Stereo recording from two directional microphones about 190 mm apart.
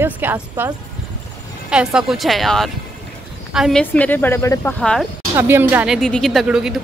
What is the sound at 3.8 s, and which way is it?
Speech, 10° left (ahead or behind).